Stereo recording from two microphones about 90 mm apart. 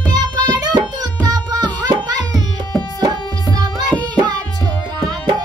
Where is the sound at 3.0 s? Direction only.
50° right (ahead or behind).